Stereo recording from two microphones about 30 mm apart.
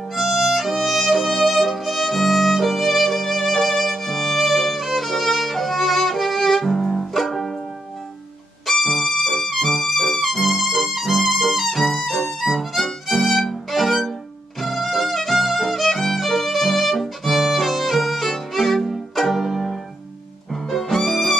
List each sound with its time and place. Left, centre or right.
0.1 s violin: centre
6.8 s music: centre
7.2 s music: centre
8.6 s music: centre
14.6 s violin: centre
20.8 s music: centre